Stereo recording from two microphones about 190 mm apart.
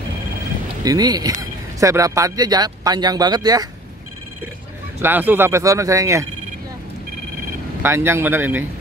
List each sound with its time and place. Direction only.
0.8 s speech: 20° right (ahead or behind)
5.0 s speech: 10° right (ahead or behind)
7.8 s speech: 15° right (ahead or behind)